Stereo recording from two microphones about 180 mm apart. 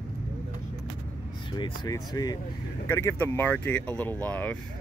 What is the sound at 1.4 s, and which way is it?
Speech, 25° left (ahead or behind).